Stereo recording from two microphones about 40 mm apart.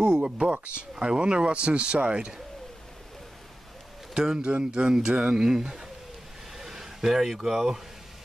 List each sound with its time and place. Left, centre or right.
0.0 s speech: right
4.1 s speech: centre